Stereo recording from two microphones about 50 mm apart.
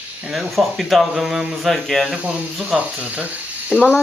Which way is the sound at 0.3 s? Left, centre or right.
Centre.